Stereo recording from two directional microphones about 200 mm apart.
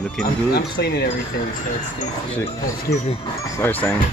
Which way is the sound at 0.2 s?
55° left (ahead or behind).